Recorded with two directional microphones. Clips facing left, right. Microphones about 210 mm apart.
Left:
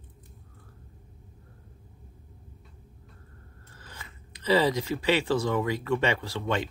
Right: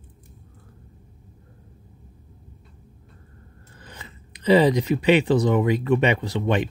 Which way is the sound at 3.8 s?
20° right (ahead or behind).